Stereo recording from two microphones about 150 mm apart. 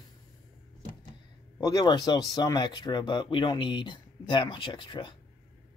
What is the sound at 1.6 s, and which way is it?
Speech, 25° left (ahead or behind).